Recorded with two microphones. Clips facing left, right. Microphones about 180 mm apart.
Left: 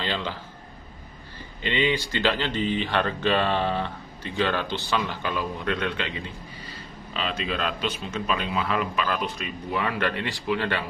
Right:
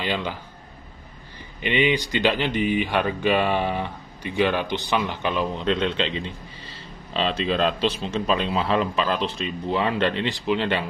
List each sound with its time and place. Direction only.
0.0 s speech: 15° right (ahead or behind)
1.6 s speech: 15° right (ahead or behind)